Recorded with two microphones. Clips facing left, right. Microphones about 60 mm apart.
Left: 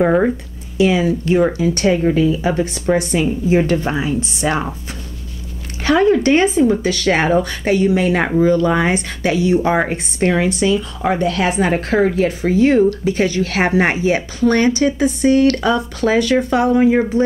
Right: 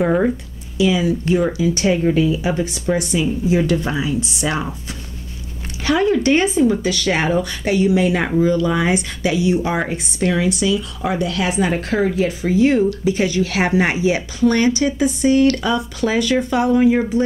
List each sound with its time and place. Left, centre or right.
0.0 s speech: centre
0.7 s a woman's voice: left
1.6 s speech: left
2.0 s speech: left
2.4 s a woman's voice: left
6.0 s a woman's voice: left